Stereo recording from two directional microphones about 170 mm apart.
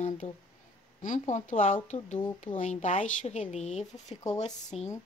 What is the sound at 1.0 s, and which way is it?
A woman's voice, 45° left (ahead or behind).